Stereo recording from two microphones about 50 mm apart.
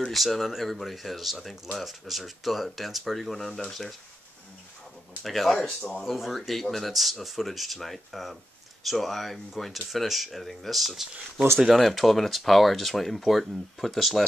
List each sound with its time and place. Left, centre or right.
0.1 s speech: centre
5.2 s speech: centre
5.8 s speech: centre
6.0 s speech: centre